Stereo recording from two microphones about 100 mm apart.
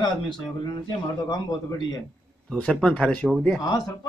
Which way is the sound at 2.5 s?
10° left (ahead or behind).